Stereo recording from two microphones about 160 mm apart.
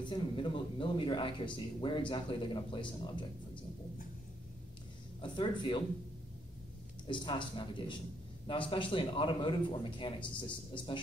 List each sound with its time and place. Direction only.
0.0 s speech: 30° left (ahead or behind)
5.2 s speech: 30° left (ahead or behind)
7.1 s speech: 30° left (ahead or behind)